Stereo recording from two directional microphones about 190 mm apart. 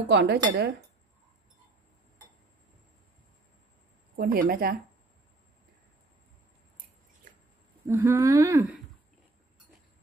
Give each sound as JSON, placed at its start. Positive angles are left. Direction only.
{"t": 0.1, "sound": "speech", "side_deg": -65}
{"t": 4.2, "sound": "speech", "side_deg": -50}
{"t": 7.8, "sound": "speech", "side_deg": -15}